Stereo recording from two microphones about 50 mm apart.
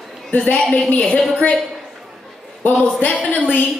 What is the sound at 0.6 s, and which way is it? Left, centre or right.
Speech, centre.